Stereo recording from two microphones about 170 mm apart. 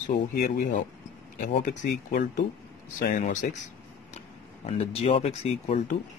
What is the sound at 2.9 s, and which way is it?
Speech, 50° left (ahead or behind).